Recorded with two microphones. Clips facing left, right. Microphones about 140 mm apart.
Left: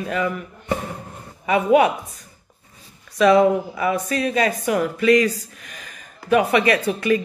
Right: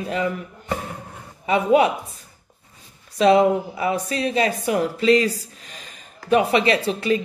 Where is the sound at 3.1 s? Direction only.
25° right (ahead or behind).